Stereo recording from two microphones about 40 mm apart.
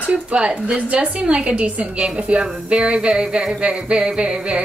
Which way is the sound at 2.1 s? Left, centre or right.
Right.